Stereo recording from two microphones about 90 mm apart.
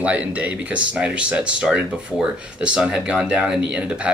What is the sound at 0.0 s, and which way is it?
Speech, 15° right (ahead or behind).